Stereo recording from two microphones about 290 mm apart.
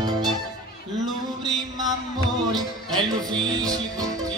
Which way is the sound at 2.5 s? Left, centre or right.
Centre.